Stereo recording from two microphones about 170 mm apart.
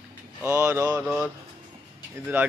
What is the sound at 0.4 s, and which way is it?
Speech, 15° right (ahead or behind).